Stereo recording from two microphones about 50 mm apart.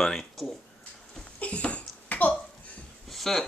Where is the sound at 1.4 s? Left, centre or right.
Left.